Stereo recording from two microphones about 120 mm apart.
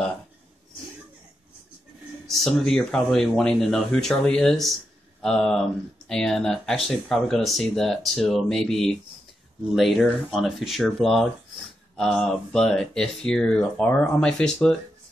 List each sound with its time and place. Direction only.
2.2 s speech: 5° left (ahead or behind)